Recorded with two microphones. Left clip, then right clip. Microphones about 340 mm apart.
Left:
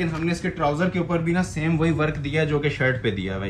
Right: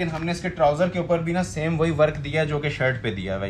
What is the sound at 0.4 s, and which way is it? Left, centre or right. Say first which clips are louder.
Speech: right 5 dB; right.